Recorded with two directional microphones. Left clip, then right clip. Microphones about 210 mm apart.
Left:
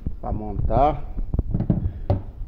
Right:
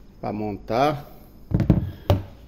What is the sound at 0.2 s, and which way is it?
Speech, 60° right (ahead or behind).